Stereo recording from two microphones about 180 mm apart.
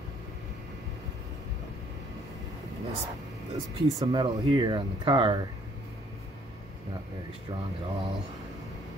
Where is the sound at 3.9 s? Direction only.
20° right (ahead or behind).